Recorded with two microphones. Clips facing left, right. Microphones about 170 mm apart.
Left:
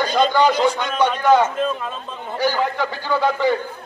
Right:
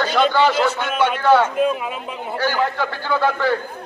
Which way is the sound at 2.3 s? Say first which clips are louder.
Left 1 dB; 15° left (ahead or behind).